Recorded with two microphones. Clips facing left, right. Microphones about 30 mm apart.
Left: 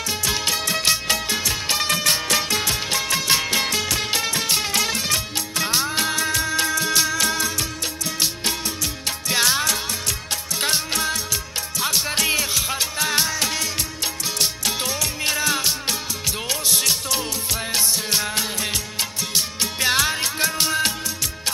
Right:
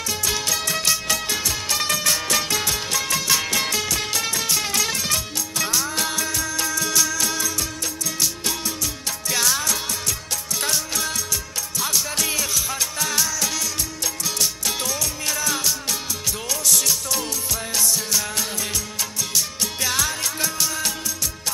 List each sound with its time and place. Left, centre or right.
0.2 s music: left